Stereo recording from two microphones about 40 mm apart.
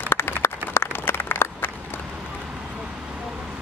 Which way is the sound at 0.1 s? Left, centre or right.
Left.